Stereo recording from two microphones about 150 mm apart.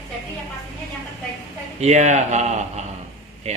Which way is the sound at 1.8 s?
50° right (ahead or behind).